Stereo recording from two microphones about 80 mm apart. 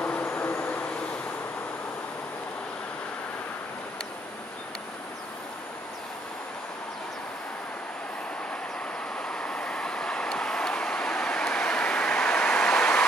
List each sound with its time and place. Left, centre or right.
0.0 s vehicle: left
9.3 s vehicle: centre